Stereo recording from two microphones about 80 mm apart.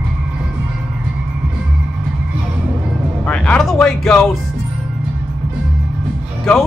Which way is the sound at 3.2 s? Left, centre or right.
Centre.